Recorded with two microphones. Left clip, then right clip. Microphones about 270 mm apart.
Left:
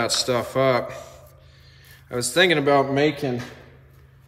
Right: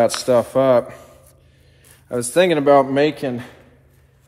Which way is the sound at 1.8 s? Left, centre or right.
Centre.